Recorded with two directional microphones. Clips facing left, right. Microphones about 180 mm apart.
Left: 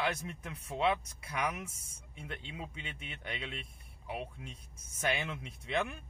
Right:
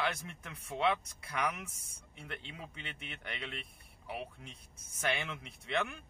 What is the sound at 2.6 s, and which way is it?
Speech, 15° left (ahead or behind).